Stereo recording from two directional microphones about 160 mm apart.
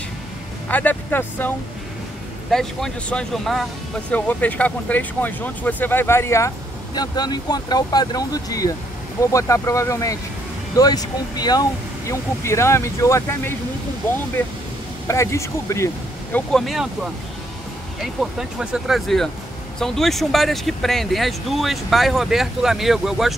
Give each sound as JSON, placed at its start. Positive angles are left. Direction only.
{"t": 0.7, "sound": "speech", "side_deg": 10}
{"t": 2.5, "sound": "speech", "side_deg": 0}
{"t": 15.0, "sound": "speech", "side_deg": 20}
{"t": 16.6, "sound": "speech", "side_deg": -5}